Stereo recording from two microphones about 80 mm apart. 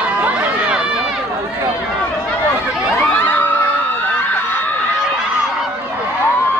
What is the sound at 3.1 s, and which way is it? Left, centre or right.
Crowd, left.